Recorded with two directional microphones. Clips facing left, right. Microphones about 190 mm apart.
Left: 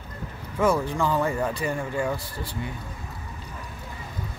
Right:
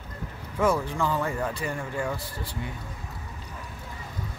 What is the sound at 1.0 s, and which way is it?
A man's voice, 25° left (ahead or behind).